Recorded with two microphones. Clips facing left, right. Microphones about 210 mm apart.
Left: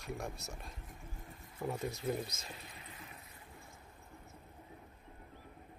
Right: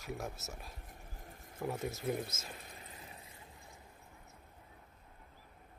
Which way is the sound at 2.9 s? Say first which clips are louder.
Even; 35° right (ahead or behind).